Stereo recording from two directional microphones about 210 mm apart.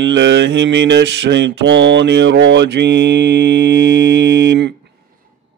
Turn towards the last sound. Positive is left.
turn(degrees=-55)  # may be behind; listen again after turning